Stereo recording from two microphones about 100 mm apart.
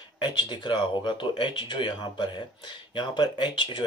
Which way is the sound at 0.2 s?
50° left (ahead or behind).